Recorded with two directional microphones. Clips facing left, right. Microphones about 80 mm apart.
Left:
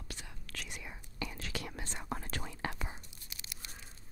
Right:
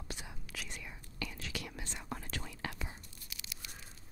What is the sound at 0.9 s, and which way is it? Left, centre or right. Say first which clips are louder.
Whispering: left 3 dB; left.